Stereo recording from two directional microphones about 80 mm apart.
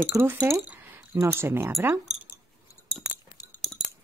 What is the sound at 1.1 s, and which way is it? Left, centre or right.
Speech, right.